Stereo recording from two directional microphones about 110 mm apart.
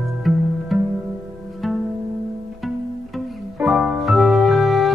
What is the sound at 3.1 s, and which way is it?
Music, 5° right (ahead or behind).